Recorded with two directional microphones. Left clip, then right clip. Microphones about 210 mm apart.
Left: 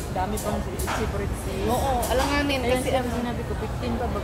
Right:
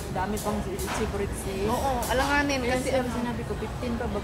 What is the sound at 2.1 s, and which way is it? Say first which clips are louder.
Speech: right 2 dB; 25° left (ahead or behind).